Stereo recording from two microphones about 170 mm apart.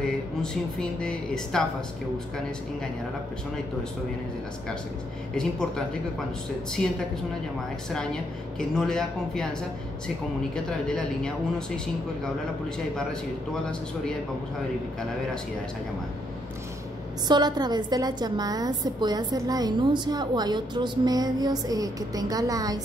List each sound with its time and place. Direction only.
0.0 s speech: 5° left (ahead or behind)
5.3 s speech: 5° left (ahead or behind)
7.9 s speech: 5° left (ahead or behind)
17.3 s a woman's voice: 25° right (ahead or behind)